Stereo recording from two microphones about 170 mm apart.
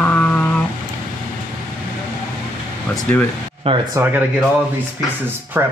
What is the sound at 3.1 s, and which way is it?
Speech, 10° left (ahead or behind).